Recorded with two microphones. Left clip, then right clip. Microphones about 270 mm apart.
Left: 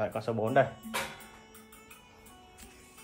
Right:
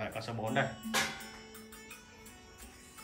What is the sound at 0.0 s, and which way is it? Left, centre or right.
Speech, centre.